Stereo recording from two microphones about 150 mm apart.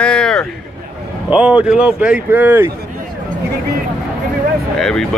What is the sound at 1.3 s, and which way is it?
Speech, 10° right (ahead or behind).